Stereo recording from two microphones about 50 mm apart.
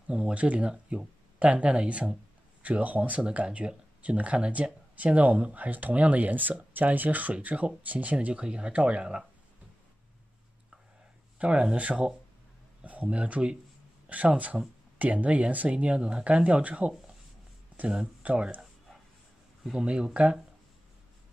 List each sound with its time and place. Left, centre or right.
0.3 s speech: right
11.3 s speech: right
18.2 s speech: right
19.6 s speech: centre